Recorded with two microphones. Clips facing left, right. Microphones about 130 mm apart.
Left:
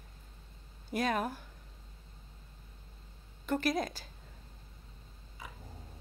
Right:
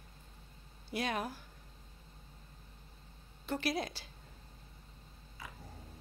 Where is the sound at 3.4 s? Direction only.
45° left (ahead or behind).